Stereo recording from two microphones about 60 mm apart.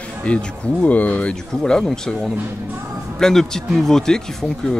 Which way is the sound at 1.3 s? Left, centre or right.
Centre.